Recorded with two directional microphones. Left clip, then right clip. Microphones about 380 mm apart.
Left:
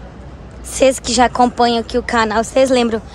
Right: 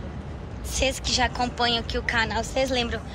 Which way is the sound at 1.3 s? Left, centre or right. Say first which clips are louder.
Left 11 dB; centre.